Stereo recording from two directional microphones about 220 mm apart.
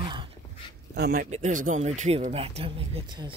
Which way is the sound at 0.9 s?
45° right (ahead or behind).